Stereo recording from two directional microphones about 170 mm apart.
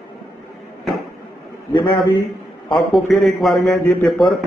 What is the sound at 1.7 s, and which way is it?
Speech, 30° left (ahead or behind).